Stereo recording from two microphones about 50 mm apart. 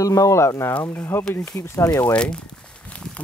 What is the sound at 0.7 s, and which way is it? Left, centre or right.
Speech, left.